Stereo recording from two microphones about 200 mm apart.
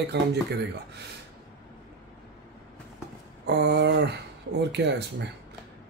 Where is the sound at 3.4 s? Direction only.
55° right (ahead or behind).